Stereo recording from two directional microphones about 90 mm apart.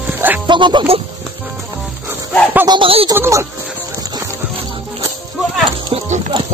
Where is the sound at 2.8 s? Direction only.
90° right.